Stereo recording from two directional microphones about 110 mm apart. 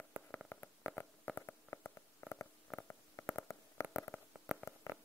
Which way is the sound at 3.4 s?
25° left (ahead or behind).